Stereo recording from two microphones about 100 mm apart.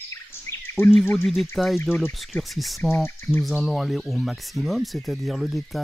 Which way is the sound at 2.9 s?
15° left (ahead or behind).